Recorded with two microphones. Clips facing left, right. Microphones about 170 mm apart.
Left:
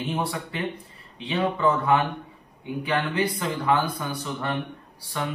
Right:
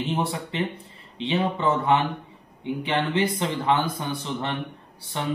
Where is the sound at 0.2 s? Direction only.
25° right (ahead or behind).